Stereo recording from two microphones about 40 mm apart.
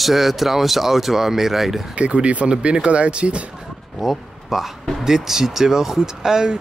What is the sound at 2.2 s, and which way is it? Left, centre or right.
Speech, right.